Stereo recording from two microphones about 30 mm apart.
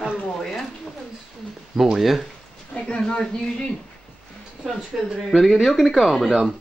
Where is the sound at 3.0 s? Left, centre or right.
Left.